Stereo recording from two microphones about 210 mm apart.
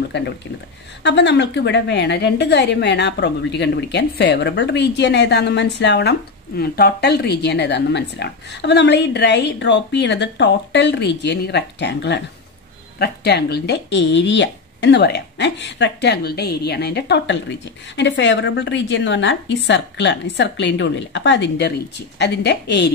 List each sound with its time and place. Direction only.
0.1 s a woman's voice: 55° left (ahead or behind)